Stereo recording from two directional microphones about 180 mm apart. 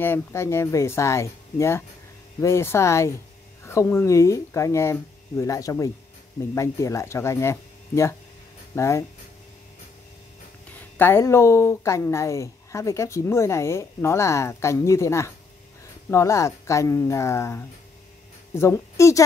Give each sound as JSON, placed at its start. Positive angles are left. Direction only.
{"t": 0.0, "sound": "speech", "side_deg": 15}
{"t": 10.8, "sound": "speech", "side_deg": 10}